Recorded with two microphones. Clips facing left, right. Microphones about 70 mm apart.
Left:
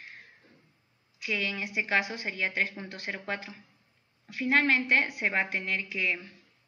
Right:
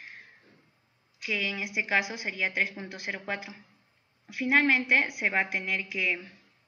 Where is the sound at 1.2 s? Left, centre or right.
Centre.